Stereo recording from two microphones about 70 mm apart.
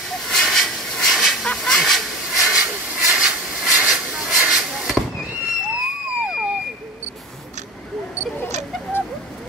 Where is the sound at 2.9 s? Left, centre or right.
Centre.